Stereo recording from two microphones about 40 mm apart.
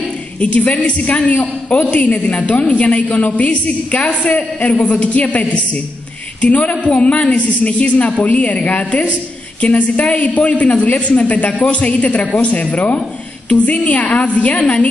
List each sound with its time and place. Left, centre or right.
0.4 s a man's voice: left
6.4 s a man's voice: left